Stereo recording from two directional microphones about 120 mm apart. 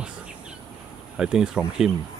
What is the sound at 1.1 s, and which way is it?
Speech, 5° right (ahead or behind).